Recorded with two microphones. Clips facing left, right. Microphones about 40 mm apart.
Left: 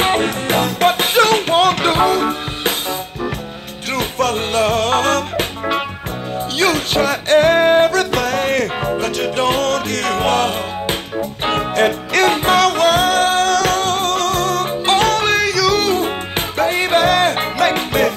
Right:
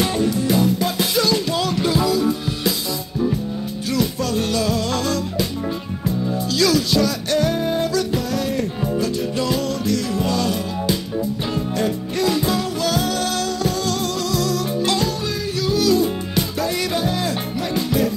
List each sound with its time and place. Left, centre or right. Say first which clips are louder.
0.0 s music: left 3 dB; left
3.9 s music: left 4 dB; left
6.6 s music: left 2 dB; left
11.5 s music: left 9 dB; left
12.8 s music: left 8 dB; left
13.5 s music: left 7 dB; left
13.8 s music: left 5 dB; left
15.8 s music: even; left
17.0 s music: left 8 dB; left